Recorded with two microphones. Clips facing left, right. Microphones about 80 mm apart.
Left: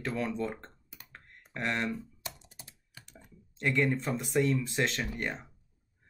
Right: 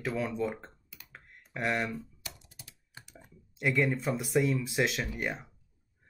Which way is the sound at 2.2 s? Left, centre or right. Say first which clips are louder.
Left 3 dB; left.